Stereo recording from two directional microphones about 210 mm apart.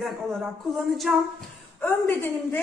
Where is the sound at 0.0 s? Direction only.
Centre (ahead or behind).